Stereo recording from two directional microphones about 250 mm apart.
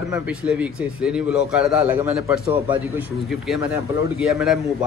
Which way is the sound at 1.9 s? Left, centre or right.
Centre.